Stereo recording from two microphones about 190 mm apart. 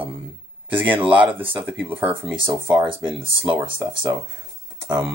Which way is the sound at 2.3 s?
25° right (ahead or behind).